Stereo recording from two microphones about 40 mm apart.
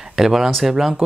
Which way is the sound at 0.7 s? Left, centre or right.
Centre.